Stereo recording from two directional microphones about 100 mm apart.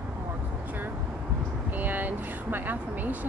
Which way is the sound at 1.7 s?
20° right (ahead or behind).